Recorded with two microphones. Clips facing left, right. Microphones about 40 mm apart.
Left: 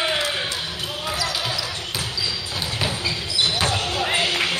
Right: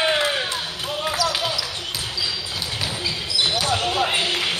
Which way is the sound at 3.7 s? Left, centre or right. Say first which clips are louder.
Right 3 dB; right.